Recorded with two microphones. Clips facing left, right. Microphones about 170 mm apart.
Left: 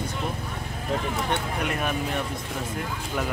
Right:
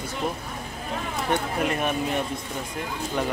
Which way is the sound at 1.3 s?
Centre (ahead or behind).